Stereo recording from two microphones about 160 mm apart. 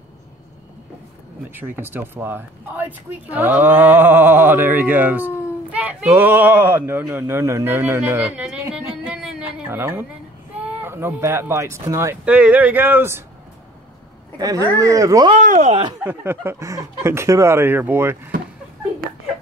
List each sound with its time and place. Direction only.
1.5 s speech: 10° right (ahead or behind)
14.4 s speech: 20° right (ahead or behind)
15.3 s speech: 50° right (ahead or behind)
16.0 s speech: 15° right (ahead or behind)